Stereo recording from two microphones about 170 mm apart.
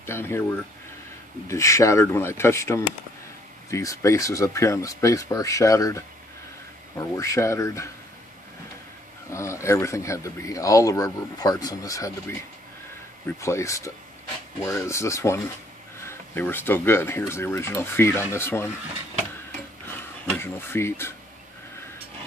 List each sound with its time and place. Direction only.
0.0 s speech: 15° left (ahead or behind)
9.3 s speech: 15° left (ahead or behind)
20.2 s speech: 15° left (ahead or behind)